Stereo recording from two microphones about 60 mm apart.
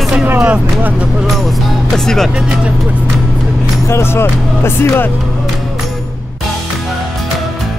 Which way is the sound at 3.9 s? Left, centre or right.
Left.